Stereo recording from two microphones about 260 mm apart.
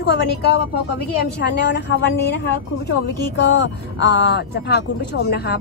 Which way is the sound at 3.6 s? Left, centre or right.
Left.